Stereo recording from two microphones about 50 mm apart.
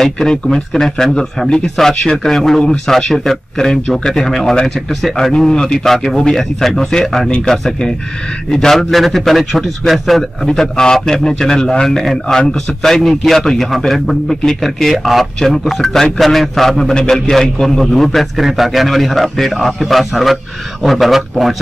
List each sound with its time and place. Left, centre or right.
0.0 s a man's voice: centre
10.5 s a man's voice: centre